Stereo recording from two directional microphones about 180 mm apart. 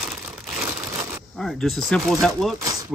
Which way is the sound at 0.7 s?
15° right (ahead or behind).